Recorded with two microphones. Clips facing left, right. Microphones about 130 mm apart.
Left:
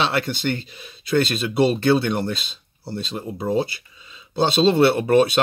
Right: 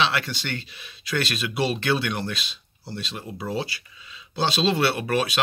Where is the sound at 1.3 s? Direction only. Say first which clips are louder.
Left 7 dB; 30° left (ahead or behind).